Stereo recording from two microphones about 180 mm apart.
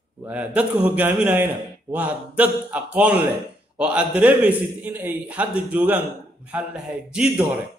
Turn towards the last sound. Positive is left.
turn(degrees=-5)  # may be behind; listen again after turning